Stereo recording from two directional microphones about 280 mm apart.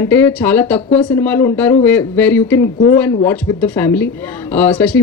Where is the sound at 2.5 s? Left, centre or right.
Left.